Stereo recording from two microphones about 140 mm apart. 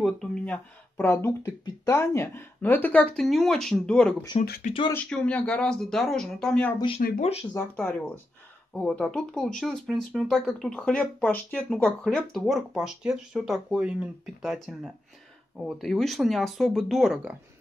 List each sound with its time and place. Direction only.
0.0 s speech: 5° left (ahead or behind)
0.9 s speech: 15° left (ahead or behind)
4.4 s speech: 60° left (ahead or behind)
4.9 s speech: 10° left (ahead or behind)
7.0 s speech: 90° left
7.5 s speech: 10° left (ahead or behind)